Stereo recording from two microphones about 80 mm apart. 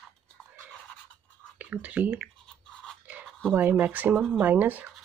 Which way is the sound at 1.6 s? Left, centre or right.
Centre.